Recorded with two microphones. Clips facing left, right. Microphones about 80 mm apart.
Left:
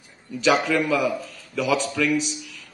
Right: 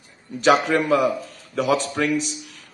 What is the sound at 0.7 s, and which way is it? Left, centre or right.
A man's voice, right.